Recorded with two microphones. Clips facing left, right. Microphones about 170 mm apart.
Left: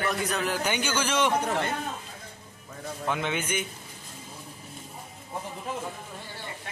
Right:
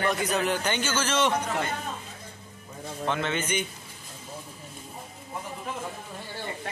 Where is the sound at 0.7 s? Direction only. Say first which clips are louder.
Even; 15° left (ahead or behind).